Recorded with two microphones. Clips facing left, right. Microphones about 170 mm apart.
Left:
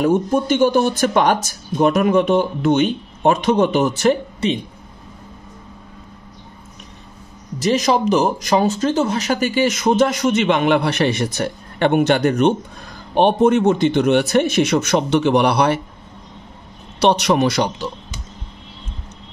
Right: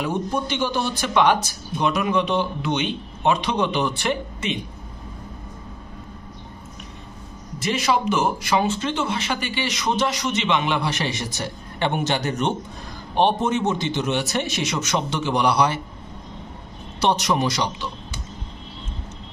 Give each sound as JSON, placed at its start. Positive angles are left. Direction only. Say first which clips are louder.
{"t": 0.0, "sound": "speech", "louder": "left 8 dB", "side_deg": 50}
{"t": 7.6, "sound": "speech", "louder": "left 5 dB", "side_deg": 40}
{"t": 17.0, "sound": "speech", "louder": "left 6 dB", "side_deg": 65}